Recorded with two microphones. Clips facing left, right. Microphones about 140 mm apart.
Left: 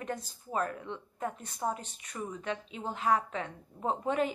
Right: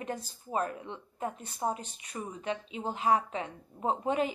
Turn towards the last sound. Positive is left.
turn(degrees=-15)  # may be behind; listen again after turning